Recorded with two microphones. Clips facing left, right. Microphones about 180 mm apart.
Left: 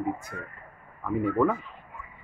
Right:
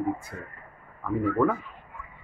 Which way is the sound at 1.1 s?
Centre (ahead or behind).